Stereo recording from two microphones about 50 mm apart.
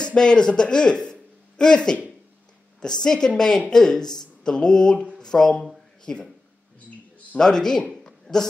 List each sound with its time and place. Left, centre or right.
0.0 s speech: centre
7.3 s speech: centre
7.9 s a sound: centre